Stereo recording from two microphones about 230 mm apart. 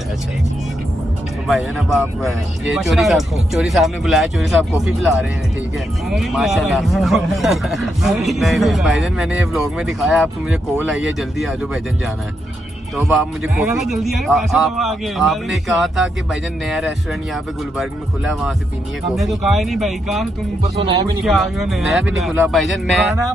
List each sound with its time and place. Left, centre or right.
1.5 s a man's voice: centre
12.9 s a man's voice: centre
20.8 s speech: right
21.2 s a man's voice: centre